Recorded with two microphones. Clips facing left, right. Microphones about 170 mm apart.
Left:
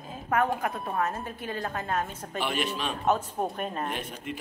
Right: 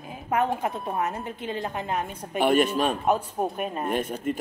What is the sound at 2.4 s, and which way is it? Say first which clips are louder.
Speech: right 9 dB; 50° right (ahead or behind).